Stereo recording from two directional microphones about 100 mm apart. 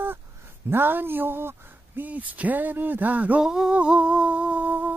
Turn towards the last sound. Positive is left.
turn(degrees=-15)  # may be behind; listen again after turning